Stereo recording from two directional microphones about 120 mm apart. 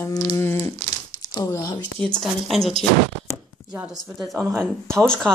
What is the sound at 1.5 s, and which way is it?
Speech, 35° left (ahead or behind).